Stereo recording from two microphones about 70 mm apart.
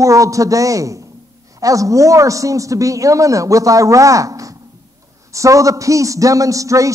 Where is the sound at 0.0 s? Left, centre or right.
Right.